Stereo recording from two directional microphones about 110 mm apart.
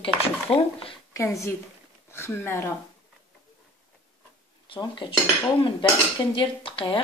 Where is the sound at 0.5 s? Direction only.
55° left (ahead or behind).